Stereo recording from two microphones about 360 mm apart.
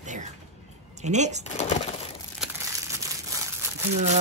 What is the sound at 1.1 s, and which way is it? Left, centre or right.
Speech, centre.